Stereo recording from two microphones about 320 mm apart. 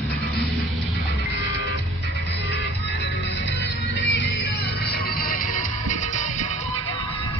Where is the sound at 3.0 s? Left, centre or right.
Left.